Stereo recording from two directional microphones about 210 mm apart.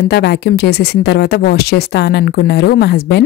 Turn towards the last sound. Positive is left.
turn(degrees=50)  # may be behind; listen again after turning